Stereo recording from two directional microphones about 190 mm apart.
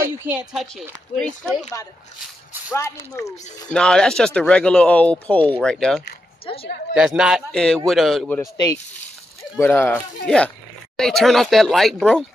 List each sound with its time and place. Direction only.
0.2 s speech: 10° right (ahead or behind)
2.7 s speech: 15° left (ahead or behind)
3.7 s speech: 5° left (ahead or behind)
6.4 s a woman's voice: 30° left (ahead or behind)
6.9 s speech: 5° right (ahead or behind)
8.4 s speech: 20° left (ahead or behind); by 12.3 s centre (ahead or behind)